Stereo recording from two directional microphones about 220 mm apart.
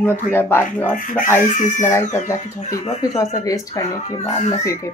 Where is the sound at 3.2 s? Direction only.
15° left (ahead or behind).